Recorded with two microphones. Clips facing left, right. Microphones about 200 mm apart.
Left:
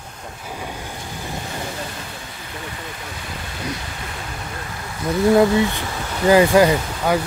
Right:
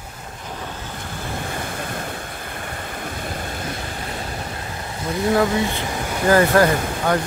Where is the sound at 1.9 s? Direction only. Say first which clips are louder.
Right 5 dB; 55° right (ahead or behind).